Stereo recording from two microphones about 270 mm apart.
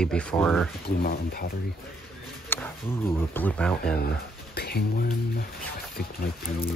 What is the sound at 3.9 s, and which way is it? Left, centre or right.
Speech, left.